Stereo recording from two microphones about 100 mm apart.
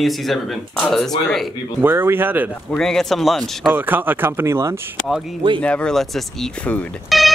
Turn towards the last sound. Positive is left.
turn(degrees=0)  # may be behind; listen again after turning